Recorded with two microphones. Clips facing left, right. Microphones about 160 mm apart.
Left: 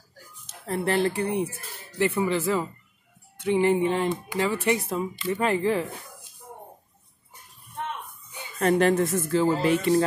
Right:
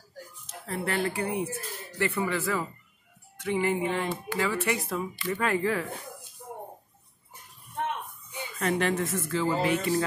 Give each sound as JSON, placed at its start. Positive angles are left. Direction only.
{"t": 0.7, "sound": "speech", "side_deg": 30}
{"t": 8.5, "sound": "speech", "side_deg": 35}